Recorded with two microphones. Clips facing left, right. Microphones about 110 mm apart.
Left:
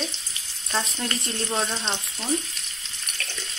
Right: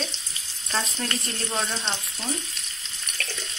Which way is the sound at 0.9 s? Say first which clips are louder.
Left 1 dB; 15° left (ahead or behind).